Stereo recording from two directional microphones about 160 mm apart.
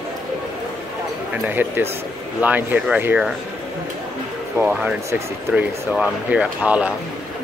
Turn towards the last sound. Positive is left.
turn(degrees=-10)  # may be behind; listen again after turning